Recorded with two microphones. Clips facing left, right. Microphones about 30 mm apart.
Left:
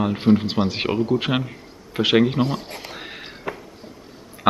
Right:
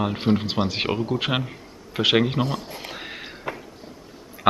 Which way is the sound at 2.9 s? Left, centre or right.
Centre.